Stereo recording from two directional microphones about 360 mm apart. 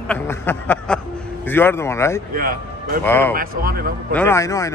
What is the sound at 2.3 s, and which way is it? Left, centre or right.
Speech, right.